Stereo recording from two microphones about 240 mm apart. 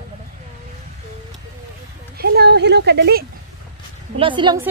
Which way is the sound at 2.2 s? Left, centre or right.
Right.